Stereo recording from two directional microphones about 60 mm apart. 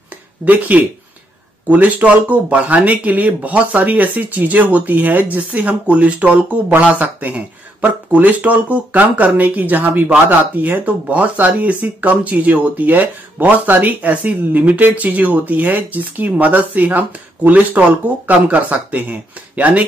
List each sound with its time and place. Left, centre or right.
0.5 s speech: right